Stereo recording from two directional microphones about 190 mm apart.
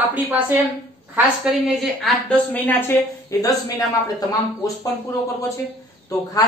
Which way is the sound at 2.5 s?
10° left (ahead or behind).